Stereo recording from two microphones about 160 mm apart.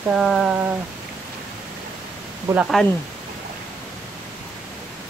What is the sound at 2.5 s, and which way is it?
Speech, 20° right (ahead or behind).